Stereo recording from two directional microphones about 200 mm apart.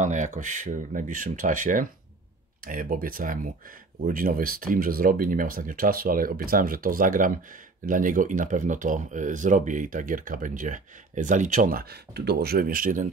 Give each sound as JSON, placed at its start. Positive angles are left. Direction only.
{"t": 0.0, "sound": "speech", "side_deg": -40}